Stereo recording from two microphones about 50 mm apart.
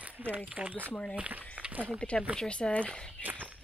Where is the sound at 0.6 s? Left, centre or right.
Right.